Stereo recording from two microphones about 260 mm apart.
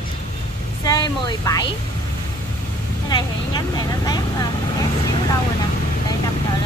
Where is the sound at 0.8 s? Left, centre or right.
Centre.